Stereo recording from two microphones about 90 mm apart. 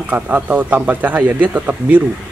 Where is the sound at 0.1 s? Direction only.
20° right (ahead or behind).